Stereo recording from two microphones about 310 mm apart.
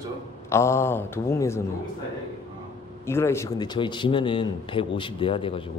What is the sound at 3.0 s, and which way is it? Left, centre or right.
A man's voice, centre.